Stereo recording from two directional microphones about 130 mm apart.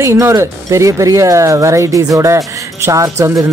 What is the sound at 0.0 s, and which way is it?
Speech, 20° right (ahead or behind).